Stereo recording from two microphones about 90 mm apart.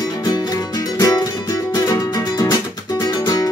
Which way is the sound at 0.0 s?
45° left (ahead or behind).